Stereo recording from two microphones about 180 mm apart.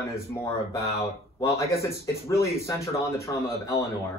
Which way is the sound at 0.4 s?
35° left (ahead or behind).